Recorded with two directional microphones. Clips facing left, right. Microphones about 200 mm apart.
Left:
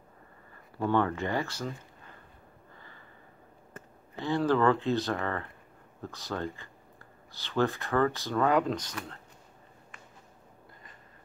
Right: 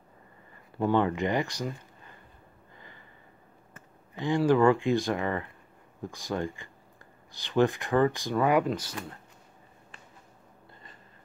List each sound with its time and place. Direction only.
0.7 s speech: 15° right (ahead or behind)
4.1 s speech: 15° right (ahead or behind)